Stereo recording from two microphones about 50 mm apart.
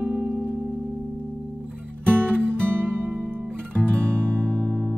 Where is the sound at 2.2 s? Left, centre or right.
Right.